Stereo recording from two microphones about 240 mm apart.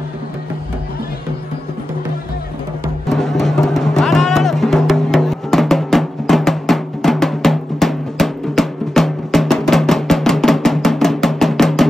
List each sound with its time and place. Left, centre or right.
3.1 s music: centre